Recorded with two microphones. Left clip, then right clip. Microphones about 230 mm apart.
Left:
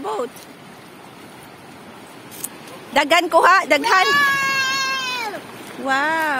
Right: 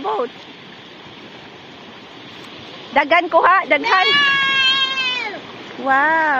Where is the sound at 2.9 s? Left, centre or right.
Left.